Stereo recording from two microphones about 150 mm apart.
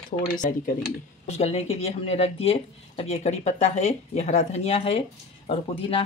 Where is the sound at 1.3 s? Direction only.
45° left (ahead or behind).